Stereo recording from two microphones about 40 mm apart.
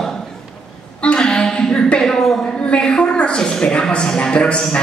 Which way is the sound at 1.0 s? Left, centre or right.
Left.